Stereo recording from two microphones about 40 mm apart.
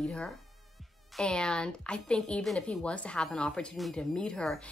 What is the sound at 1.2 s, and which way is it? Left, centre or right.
A woman's voice, left.